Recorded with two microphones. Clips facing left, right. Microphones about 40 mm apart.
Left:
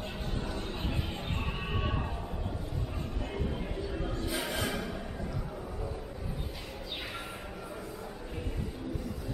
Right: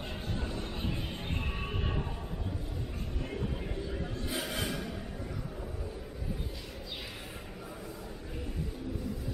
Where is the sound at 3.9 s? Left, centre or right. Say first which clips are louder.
Left 2 dB; centre.